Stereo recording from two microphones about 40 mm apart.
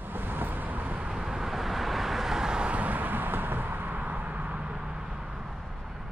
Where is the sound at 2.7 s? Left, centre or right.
Right.